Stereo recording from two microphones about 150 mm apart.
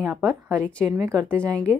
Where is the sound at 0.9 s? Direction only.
20° right (ahead or behind).